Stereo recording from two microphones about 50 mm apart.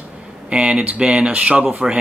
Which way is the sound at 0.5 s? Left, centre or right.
Right.